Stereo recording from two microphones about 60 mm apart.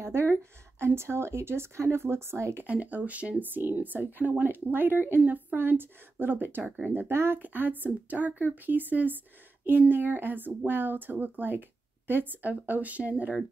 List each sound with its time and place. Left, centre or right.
0.0 s speech: right
2.6 s speech: right
7.3 s speech: right